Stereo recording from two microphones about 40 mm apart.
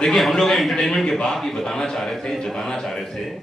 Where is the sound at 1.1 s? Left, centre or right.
Centre.